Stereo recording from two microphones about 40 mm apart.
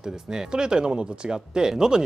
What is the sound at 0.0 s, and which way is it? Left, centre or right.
Speech, centre.